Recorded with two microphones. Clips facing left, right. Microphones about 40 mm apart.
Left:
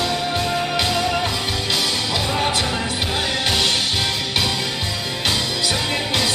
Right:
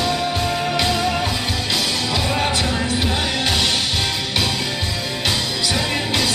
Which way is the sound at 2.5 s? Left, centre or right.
Centre.